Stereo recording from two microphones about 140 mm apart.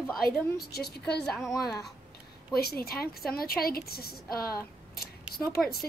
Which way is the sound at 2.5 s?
90° left.